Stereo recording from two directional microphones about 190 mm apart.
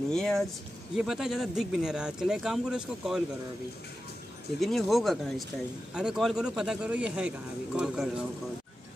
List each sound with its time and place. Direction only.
0.1 s speech: centre (ahead or behind)
4.6 s speech: centre (ahead or behind)